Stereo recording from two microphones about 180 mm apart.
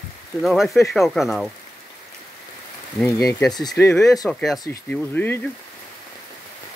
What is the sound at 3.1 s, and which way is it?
Speech, 20° left (ahead or behind).